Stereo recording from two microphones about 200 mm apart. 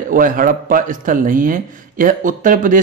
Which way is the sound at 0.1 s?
45° right (ahead or behind).